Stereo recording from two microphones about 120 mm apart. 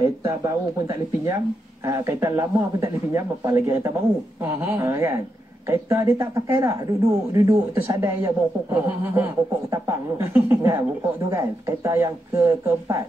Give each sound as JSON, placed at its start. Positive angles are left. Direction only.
{"t": 0.2, "sound": "speech", "side_deg": -25}